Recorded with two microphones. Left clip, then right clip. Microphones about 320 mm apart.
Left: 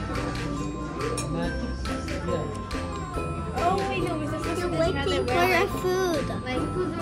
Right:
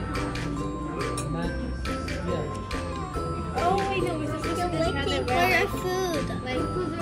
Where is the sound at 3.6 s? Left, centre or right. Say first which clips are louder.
Even; centre.